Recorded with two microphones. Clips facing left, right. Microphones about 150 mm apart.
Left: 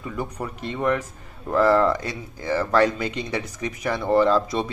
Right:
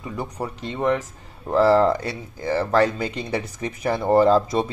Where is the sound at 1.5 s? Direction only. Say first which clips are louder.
Right 2 dB; 30° right (ahead or behind).